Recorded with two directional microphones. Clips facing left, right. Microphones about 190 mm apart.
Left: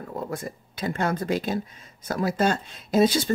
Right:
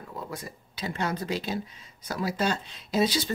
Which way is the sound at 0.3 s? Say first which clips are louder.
Left 6 dB; 50° left (ahead or behind).